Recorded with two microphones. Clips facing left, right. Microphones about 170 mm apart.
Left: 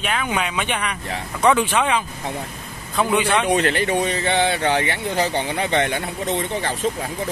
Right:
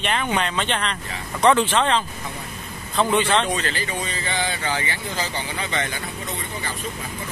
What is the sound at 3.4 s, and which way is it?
Speech, 65° left (ahead or behind).